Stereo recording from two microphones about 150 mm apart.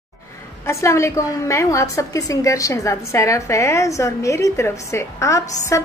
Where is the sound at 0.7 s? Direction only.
20° left (ahead or behind).